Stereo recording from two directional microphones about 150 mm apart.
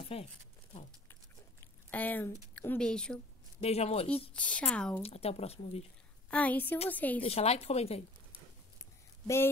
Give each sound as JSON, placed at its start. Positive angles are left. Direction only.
{"t": 0.0, "sound": "speech", "side_deg": 40}
{"t": 1.9, "sound": "speech", "side_deg": 10}
{"t": 3.6, "sound": "speech", "side_deg": 45}
{"t": 4.3, "sound": "speech", "side_deg": 10}
{"t": 5.0, "sound": "speech", "side_deg": 45}
{"t": 6.3, "sound": "speech", "side_deg": 10}
{"t": 7.2, "sound": "speech", "side_deg": 45}